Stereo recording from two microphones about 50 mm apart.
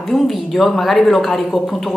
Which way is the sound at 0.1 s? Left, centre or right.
Centre.